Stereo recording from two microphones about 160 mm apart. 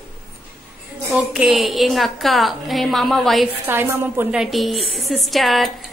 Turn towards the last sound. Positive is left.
turn(degrees=0)  # may be behind; listen again after turning